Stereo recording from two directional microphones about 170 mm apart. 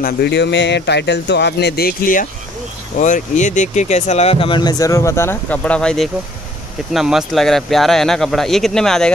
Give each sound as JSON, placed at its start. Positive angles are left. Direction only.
{"t": 0.0, "sound": "speech", "side_deg": 80}